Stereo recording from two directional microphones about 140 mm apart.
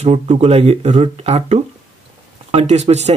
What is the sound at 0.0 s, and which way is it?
Speech, 50° right (ahead or behind).